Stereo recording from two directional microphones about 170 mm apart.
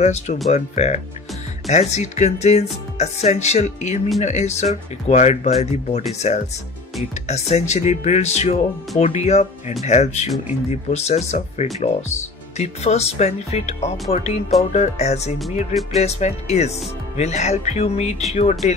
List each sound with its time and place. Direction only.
0.0 s speech: 40° left (ahead or behind)